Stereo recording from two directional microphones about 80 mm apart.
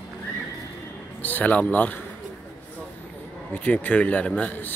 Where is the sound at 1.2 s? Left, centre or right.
Left.